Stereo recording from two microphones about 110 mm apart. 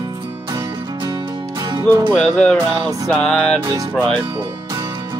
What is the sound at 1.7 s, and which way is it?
Music, 40° right (ahead or behind).